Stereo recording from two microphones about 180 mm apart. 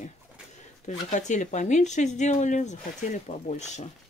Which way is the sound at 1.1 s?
40° left (ahead or behind).